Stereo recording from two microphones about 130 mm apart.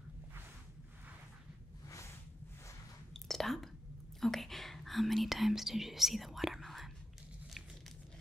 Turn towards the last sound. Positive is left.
turn(degrees=0)  # may be behind; listen again after turning